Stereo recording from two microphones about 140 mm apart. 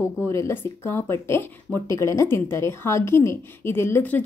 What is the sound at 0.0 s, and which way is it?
A woman's voice, 20° left (ahead or behind).